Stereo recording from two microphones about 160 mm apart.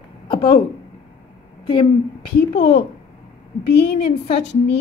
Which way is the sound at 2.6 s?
90° left.